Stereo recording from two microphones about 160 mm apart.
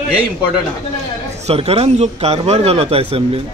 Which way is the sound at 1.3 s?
40° right (ahead or behind).